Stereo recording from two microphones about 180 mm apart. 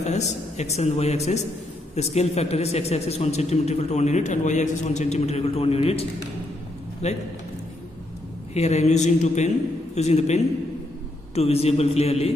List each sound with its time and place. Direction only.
0.0 s a man's voice: 40° left (ahead or behind)
8.5 s a man's voice: 40° left (ahead or behind)